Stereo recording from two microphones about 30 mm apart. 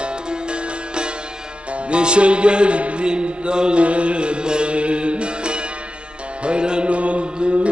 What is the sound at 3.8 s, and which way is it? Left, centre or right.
Music, right.